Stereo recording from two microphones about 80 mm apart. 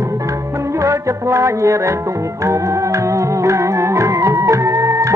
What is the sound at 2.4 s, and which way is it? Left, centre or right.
Music, right.